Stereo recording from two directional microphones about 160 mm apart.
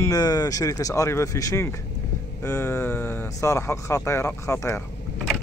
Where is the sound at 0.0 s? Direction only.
25° left (ahead or behind).